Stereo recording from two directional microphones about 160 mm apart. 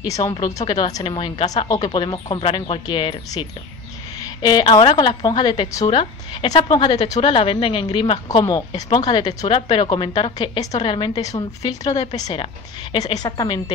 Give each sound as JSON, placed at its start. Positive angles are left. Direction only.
{"t": 0.0, "sound": "a woman's voice", "side_deg": 20}